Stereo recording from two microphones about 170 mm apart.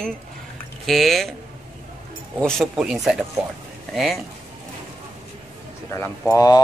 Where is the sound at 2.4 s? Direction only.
5° left (ahead or behind).